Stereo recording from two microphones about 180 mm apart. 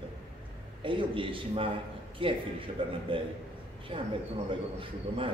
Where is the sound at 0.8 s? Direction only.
30° right (ahead or behind).